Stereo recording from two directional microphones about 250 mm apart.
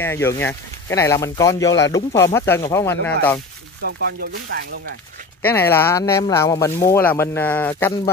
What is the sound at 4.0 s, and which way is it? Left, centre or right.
Speech, right.